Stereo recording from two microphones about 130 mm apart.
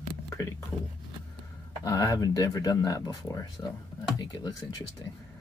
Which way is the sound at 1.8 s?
25° left (ahead or behind).